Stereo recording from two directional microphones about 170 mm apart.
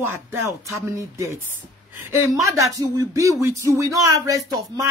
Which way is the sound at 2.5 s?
20° right (ahead or behind).